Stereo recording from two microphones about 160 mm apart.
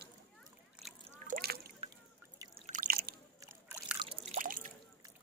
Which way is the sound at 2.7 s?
65° right (ahead or behind).